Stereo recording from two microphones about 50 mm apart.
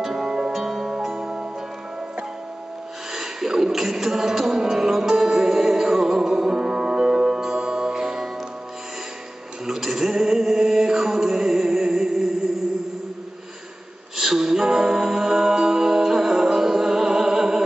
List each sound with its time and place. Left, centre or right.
0.0 s music: centre
3.1 s music: centre
9.7 s chant: centre
14.1 s music: centre